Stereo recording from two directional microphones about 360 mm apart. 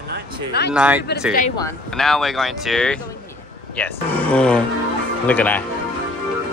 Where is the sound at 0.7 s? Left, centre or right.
Centre.